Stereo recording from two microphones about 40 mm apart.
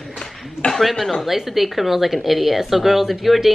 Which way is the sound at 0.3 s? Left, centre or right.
Centre.